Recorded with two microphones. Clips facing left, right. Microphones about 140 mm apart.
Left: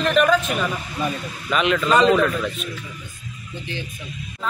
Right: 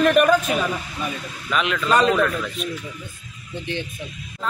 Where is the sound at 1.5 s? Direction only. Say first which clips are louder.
Left 2 dB; centre (ahead or behind).